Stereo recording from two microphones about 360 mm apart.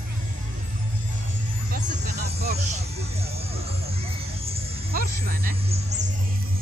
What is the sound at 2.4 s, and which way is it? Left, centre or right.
Speech, right.